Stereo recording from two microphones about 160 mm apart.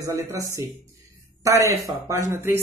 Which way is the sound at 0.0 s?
20° right (ahead or behind).